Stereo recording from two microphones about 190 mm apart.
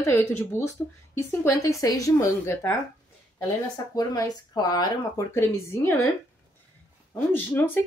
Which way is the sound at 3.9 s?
20° left (ahead or behind).